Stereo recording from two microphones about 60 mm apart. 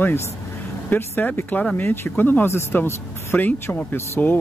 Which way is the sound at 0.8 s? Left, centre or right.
Left.